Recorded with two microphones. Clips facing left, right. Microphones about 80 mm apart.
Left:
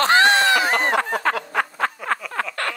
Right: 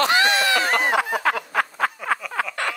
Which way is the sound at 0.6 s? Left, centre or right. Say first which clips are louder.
Left 1 dB; centre.